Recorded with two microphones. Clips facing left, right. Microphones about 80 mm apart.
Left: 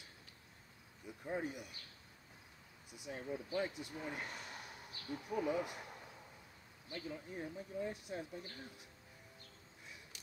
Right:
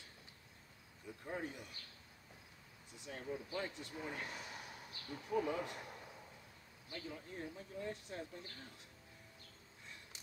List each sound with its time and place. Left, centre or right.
1.0 s cricket: centre
2.9 s speech: centre
4.4 s a sound: centre
6.9 s speech: centre